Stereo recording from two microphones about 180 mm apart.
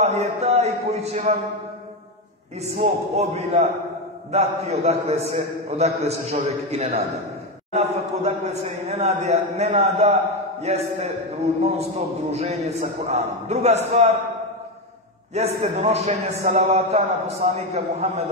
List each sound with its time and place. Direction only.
0.0 s a man's voice: 35° right (ahead or behind)
2.6 s a man's voice: 35° right (ahead or behind)
15.3 s a man's voice: 35° right (ahead or behind)